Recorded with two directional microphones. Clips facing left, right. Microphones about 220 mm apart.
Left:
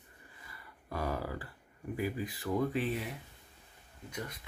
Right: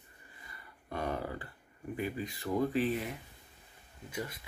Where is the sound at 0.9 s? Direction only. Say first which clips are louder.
Even; 25° right (ahead or behind).